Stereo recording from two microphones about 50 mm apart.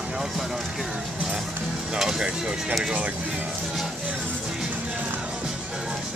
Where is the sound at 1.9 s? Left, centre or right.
Centre.